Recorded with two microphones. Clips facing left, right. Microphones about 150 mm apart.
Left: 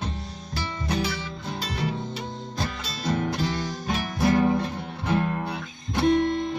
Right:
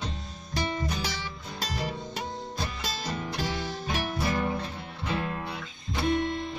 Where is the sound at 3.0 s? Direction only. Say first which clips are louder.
Left 10 dB; 55° left (ahead or behind).